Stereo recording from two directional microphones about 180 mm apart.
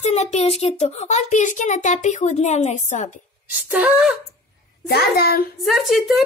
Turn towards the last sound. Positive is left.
turn(degrees=0)  # may be behind; listen again after turning